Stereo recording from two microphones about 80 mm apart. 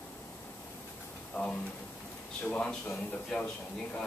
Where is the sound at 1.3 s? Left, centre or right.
Centre.